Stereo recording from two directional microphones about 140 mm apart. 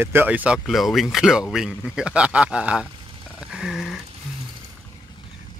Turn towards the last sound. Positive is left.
turn(degrees=0)  # may be behind; listen again after turning